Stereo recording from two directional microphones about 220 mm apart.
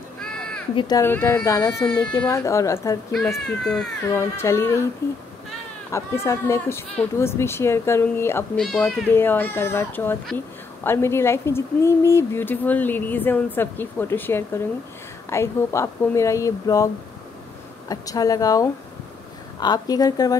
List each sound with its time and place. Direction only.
0.7 s speech: 15° left (ahead or behind)
3.4 s speech: centre (ahead or behind)
4.2 s speech: 10° left (ahead or behind)
5.9 s speech: 15° left (ahead or behind)